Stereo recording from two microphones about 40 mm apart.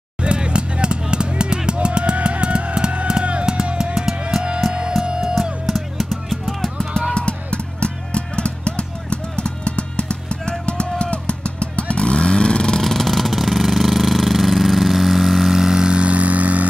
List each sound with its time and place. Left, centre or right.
0.2 s music: right
3.7 s music: centre
5.2 s drum: centre
7.2 s music: left
10.6 s vehicle: left
12.8 s vehicle: centre; by 16.6 s right